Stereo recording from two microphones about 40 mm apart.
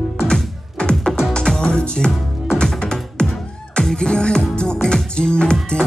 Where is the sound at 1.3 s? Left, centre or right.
Centre.